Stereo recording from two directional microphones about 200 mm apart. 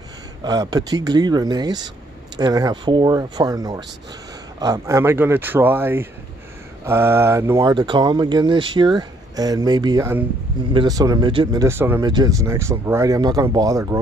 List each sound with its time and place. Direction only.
0.4 s speech: 20° right (ahead or behind)